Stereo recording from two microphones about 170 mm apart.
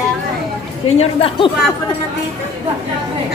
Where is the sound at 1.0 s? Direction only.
35° left (ahead or behind).